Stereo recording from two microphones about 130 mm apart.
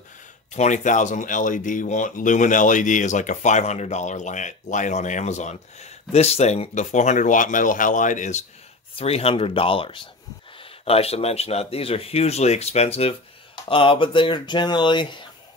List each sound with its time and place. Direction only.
0.5 s speech: 65° left (ahead or behind)
8.9 s speech: 50° left (ahead or behind)
13.7 s speech: 40° left (ahead or behind)